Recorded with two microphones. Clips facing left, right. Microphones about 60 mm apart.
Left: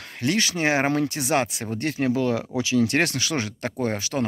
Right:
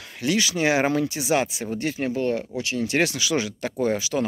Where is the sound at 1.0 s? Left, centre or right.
Left.